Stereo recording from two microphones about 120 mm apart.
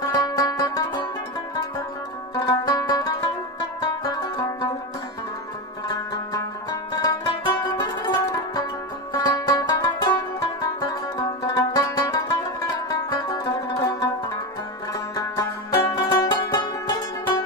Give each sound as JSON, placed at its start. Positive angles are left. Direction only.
{"t": 0.0, "sound": "music", "side_deg": 30}
{"t": 2.3, "sound": "music", "side_deg": 30}
{"t": 4.0, "sound": "banjo", "side_deg": 35}
{"t": 5.9, "sound": "music", "side_deg": 35}
{"t": 15.1, "sound": "music", "side_deg": 30}